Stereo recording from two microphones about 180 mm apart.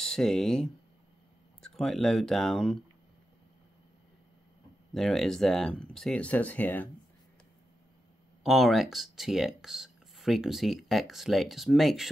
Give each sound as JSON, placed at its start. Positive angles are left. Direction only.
{"t": 0.0, "sound": "speech", "side_deg": 5}
{"t": 4.9, "sound": "speech", "side_deg": 0}
{"t": 8.5, "sound": "speech", "side_deg": 0}